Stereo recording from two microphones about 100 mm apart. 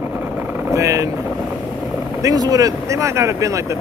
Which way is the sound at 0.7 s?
30° right (ahead or behind).